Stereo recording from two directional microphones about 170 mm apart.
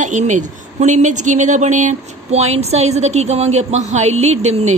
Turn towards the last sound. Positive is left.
turn(degrees=-40)  # may be behind; listen again after turning